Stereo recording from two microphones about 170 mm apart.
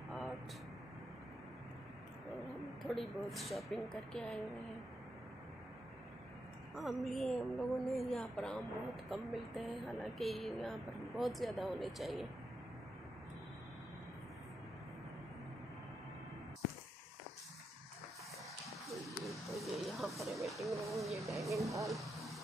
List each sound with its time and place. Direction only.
0.1 s vehicle: centre (ahead or behind)
2.3 s a woman's voice: centre (ahead or behind)
6.7 s a woman's voice: centre (ahead or behind)
19.0 s a sound: centre (ahead or behind)
20.4 s a woman's voice: centre (ahead or behind)
21.4 s speech: 20° right (ahead or behind)
21.8 s a sound: centre (ahead or behind)